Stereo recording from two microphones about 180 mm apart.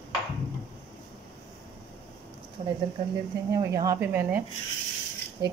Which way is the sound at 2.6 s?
30° right (ahead or behind).